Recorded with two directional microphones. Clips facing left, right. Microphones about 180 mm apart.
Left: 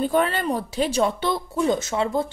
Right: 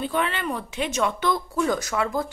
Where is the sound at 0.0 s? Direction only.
40° left (ahead or behind).